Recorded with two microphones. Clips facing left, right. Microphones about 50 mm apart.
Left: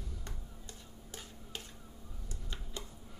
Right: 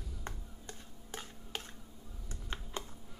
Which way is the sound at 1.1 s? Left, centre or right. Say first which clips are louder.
Right 4 dB; right.